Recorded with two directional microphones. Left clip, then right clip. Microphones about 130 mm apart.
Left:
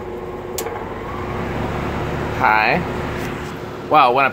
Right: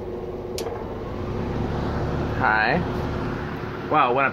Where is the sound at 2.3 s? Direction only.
10° left (ahead or behind).